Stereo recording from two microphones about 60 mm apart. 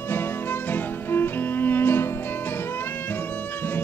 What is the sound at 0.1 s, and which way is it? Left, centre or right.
Music, left.